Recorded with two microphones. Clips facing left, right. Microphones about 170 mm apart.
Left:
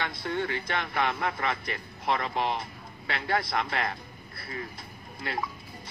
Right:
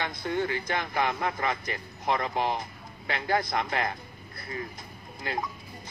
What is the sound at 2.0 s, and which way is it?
Speech, 20° right (ahead or behind).